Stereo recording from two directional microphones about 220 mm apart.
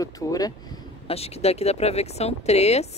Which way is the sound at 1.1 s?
30° left (ahead or behind).